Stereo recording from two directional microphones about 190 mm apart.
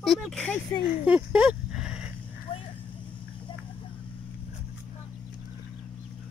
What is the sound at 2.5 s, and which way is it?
Vehicle, 30° left (ahead or behind).